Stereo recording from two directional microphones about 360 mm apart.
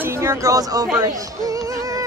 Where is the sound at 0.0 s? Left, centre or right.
Centre.